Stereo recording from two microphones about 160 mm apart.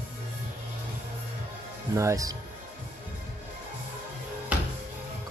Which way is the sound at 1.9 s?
20° right (ahead or behind).